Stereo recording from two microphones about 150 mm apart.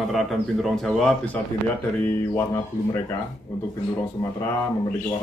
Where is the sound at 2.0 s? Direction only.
15° left (ahead or behind).